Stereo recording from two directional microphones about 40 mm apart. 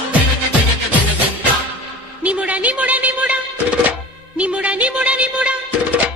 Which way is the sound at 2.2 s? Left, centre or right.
Right.